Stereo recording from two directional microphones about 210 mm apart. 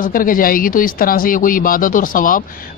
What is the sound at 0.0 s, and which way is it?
Speech, 40° left (ahead or behind).